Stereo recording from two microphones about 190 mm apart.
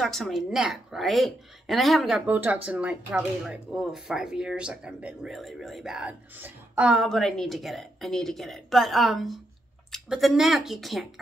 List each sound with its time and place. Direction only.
0.0 s a woman's voice: centre (ahead or behind)